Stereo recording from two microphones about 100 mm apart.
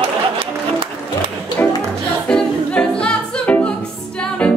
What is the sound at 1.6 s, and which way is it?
Music, 25° left (ahead or behind).